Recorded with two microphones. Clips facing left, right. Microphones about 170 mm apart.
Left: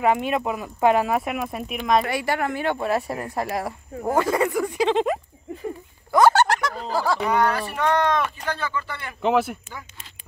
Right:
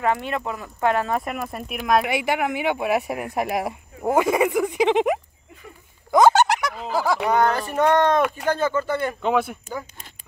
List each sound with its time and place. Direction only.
0.0 s speech: 15° left (ahead or behind); by 2.0 s 5° right (ahead or behind)
2.0 s speech: 15° right (ahead or behind)
6.1 s a sound: 20° right (ahead or behind)
7.0 s speech: 15° right (ahead or behind)
7.7 s speech: 40° right (ahead or behind)
9.2 s speech: 5° left (ahead or behind)